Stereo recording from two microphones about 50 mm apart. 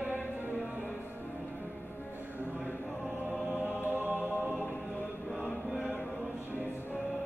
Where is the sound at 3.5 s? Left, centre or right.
Right.